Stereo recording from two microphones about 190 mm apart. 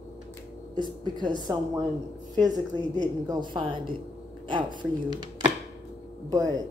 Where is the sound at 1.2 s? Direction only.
20° right (ahead or behind).